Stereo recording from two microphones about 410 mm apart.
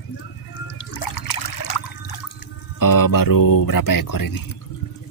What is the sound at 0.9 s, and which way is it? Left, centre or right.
Trickle, left.